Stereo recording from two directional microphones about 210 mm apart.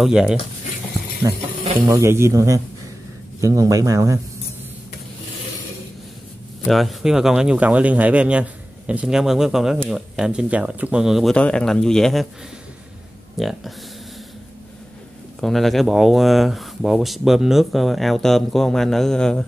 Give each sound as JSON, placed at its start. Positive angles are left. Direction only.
{"t": 0.0, "sound": "speech", "side_deg": -5}
{"t": 1.2, "sound": "speech", "side_deg": -20}
{"t": 6.7, "sound": "speech", "side_deg": 0}
{"t": 13.4, "sound": "speech", "side_deg": 0}
{"t": 15.4, "sound": "speech", "side_deg": 0}